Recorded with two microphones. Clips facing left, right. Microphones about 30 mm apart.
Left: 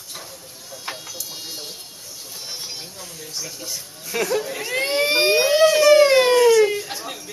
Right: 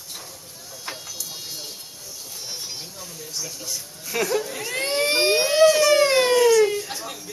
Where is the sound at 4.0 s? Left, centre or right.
Centre.